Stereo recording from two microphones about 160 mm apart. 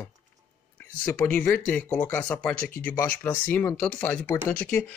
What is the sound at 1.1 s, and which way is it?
Speech, 10° left (ahead or behind).